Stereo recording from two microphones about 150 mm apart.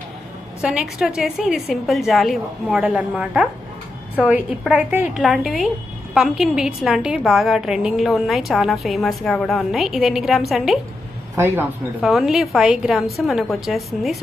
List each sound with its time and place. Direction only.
0.6 s a woman's voice: 5° right (ahead or behind)
11.3 s a man's voice: 15° right (ahead or behind)
12.0 s a woman's voice: centre (ahead or behind)